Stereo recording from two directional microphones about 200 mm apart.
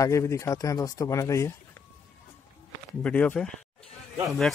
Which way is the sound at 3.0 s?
5° left (ahead or behind).